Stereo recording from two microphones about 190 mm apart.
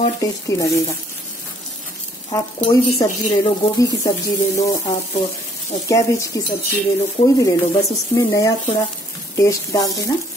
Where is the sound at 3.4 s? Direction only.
15° left (ahead or behind).